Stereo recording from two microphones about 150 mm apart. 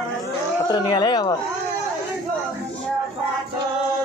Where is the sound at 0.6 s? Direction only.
25° left (ahead or behind).